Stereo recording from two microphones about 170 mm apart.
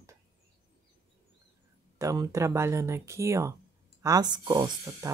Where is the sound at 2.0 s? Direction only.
20° right (ahead or behind).